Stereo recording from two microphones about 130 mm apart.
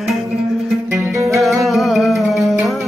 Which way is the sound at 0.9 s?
25° right (ahead or behind).